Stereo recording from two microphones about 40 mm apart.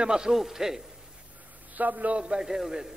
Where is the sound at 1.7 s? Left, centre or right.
Right.